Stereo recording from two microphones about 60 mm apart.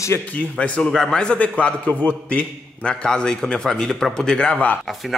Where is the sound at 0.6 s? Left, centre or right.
Centre.